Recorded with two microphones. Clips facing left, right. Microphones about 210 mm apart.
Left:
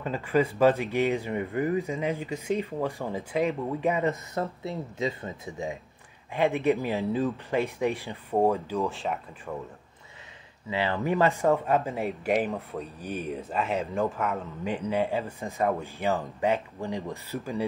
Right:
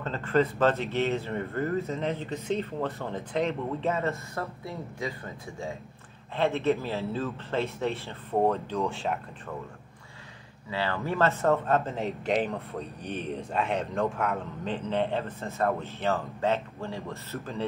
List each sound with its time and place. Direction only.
0.0 s speech: 10° left (ahead or behind)
10.7 s speech: 20° left (ahead or behind)